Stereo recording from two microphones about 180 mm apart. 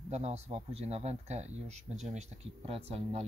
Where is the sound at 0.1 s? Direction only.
35° right (ahead or behind).